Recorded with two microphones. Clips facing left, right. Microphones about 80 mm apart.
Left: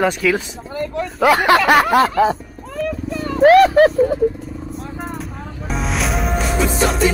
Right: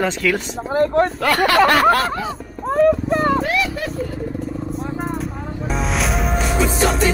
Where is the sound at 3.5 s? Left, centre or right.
Left.